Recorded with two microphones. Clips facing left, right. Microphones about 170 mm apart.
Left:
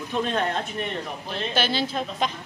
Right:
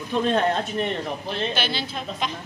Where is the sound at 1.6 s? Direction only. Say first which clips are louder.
Left 3 dB; 40° left (ahead or behind).